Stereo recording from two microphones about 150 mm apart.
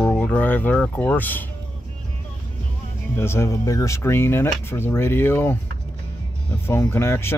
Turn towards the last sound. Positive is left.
turn(degrees=15)  # may be behind; listen again after turning